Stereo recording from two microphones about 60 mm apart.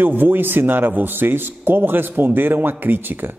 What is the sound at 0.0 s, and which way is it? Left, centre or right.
Speech, right.